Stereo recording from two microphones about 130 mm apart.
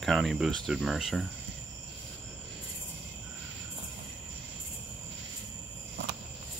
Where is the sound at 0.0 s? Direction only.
Centre (ahead or behind).